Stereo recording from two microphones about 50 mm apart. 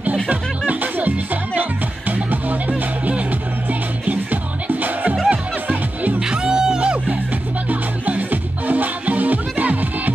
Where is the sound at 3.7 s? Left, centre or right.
Right.